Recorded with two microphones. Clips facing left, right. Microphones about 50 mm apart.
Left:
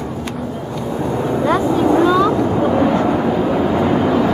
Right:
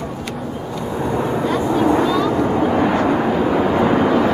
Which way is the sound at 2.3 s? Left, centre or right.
Centre.